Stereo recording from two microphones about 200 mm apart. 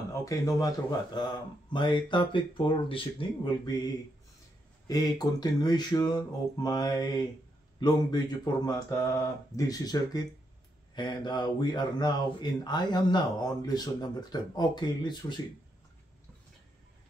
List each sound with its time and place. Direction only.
0.2 s speech: 15° left (ahead or behind)
8.6 s speech: 15° left (ahead or behind)